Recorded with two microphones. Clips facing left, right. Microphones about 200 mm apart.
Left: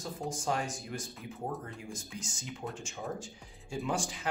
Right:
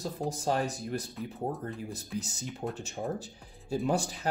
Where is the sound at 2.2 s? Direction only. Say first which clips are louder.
Right 6 dB; 35° right (ahead or behind).